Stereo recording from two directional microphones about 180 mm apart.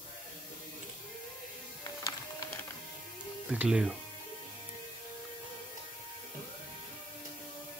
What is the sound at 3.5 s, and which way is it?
Speech, 5° right (ahead or behind).